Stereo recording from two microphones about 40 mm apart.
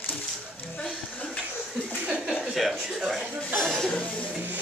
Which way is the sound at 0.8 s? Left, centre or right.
Left.